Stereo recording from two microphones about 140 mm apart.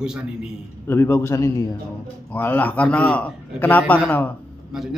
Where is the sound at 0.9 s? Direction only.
20° left (ahead or behind).